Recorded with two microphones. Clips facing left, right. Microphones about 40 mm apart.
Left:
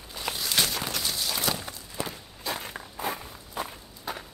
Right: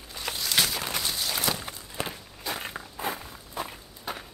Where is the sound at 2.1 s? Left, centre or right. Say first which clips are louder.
Left 1 dB; centre.